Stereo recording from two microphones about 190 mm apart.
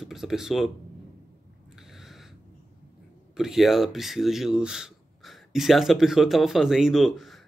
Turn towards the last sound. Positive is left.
turn(degrees=0)  # may be behind; listen again after turning